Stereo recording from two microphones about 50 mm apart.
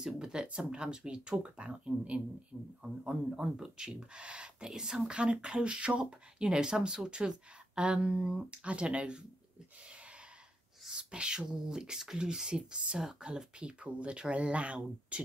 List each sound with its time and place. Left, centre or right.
0.0 s speech: centre
10.9 s speech: centre